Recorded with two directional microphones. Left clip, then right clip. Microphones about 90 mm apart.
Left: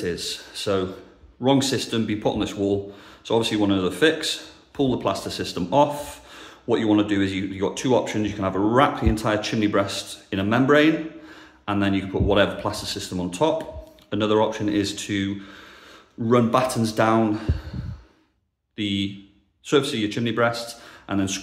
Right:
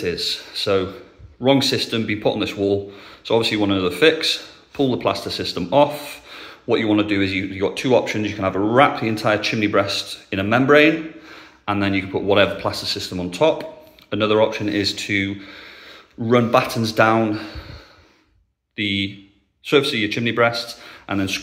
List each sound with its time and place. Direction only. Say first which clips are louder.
0.0 s speech: right 5 dB; 20° left (ahead or behind)
18.8 s speech: right 4 dB; 20° left (ahead or behind)